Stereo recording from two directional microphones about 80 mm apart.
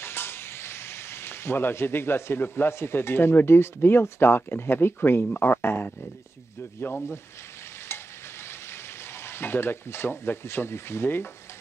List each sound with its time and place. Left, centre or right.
0.0 s frying: left
6.8 s speech: left
9.2 s speech: left